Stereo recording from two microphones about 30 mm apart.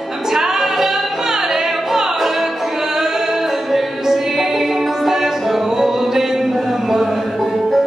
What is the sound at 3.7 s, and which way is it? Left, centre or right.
Music, centre.